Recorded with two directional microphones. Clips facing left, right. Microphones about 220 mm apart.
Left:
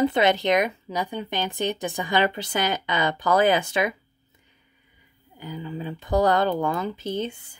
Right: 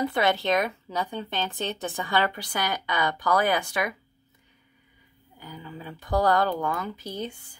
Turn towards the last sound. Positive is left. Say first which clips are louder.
# left 6 dB
turn(degrees=25)  # may be behind; listen again after turning